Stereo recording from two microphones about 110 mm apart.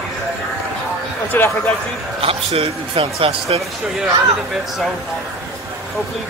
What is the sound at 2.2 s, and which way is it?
Speech, 60° right (ahead or behind).